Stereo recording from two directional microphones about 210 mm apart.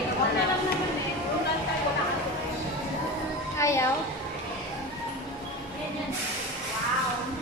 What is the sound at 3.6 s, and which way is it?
Speech, 15° left (ahead or behind).